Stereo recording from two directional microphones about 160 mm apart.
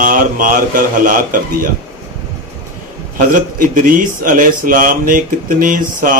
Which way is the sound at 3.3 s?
55° right (ahead or behind).